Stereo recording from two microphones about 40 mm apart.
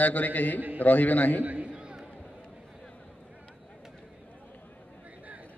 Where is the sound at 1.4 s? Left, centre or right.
Right.